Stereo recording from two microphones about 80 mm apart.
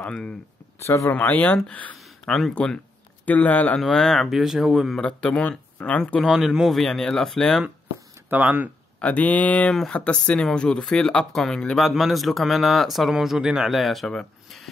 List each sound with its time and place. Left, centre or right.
0.0 s speech: centre
0.8 s speech: left
1.1 s speech: left
2.0 s a sound: centre
2.5 s speech: centre
3.3 s speech: left
3.8 s speech: centre
5.0 s speech: centre
6.2 s speech: centre
8.3 s speech: right
9.0 s speech: centre